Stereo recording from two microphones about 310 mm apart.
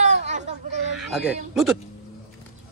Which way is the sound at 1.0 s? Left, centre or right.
Centre.